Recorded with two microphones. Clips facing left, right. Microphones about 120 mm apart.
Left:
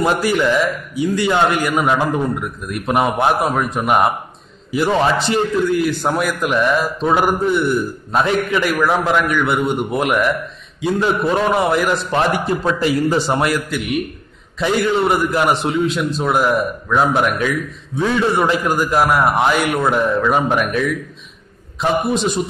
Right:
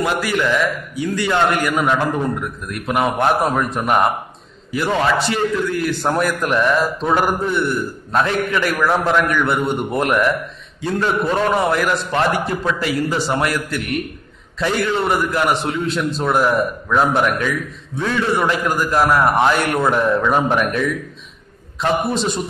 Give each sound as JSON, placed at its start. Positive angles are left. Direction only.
{"t": 0.0, "sound": "a man's voice", "side_deg": 25}
{"t": 3.4, "sound": "a man's voice", "side_deg": 5}
{"t": 6.0, "sound": "a man's voice", "side_deg": 5}
{"t": 16.0, "sound": "a man's voice", "side_deg": 10}
{"t": 18.2, "sound": "a man's voice", "side_deg": 20}